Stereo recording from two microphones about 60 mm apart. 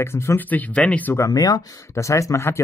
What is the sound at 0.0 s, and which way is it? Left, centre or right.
Speech, left.